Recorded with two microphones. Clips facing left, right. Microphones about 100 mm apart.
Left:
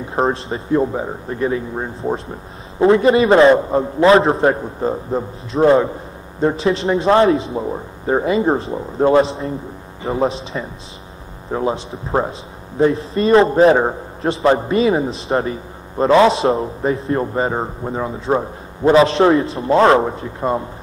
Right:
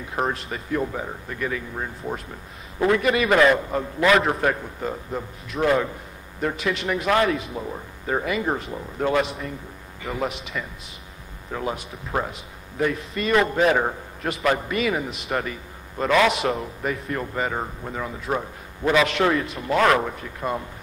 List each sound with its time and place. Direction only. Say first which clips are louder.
0.0 s a man's voice: left 7 dB; 30° left (ahead or behind)